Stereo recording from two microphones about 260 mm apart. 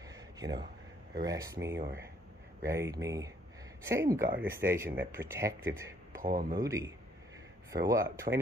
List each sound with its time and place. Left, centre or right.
0.0 s a sound: centre
1.2 s speech: centre
6.2 s a man's voice: right
6.6 s speech: centre